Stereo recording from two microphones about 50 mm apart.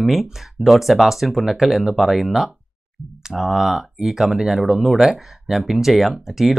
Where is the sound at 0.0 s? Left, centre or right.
Centre.